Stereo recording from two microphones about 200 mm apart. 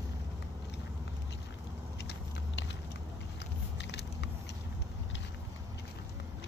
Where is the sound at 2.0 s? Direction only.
60° left (ahead or behind).